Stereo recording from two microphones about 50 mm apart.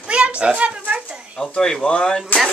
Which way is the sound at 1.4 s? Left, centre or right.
Centre.